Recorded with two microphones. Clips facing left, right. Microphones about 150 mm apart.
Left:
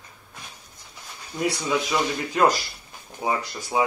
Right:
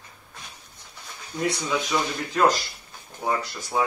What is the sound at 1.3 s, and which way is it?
Speech, 10° left (ahead or behind).